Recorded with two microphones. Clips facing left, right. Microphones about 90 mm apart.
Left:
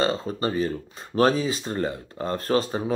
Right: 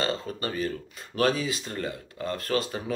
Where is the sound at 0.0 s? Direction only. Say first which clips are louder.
Left 5 dB; 30° left (ahead or behind).